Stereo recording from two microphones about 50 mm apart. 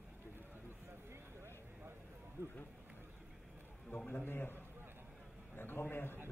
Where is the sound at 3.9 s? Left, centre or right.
Left.